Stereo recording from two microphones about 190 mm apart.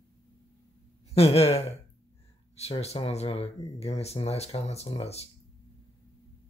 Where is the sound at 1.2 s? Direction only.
30° left (ahead or behind).